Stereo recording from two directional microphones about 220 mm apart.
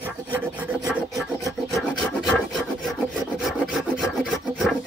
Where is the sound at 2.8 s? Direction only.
Centre (ahead or behind).